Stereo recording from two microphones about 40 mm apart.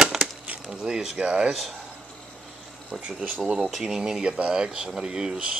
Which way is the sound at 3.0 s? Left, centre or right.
Right.